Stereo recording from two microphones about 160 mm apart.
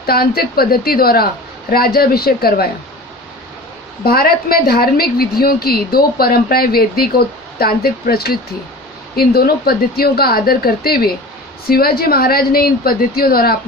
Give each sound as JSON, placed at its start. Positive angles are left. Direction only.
{"t": 0.0, "sound": "a woman's voice", "side_deg": 70}
{"t": 4.0, "sound": "a woman's voice", "side_deg": 70}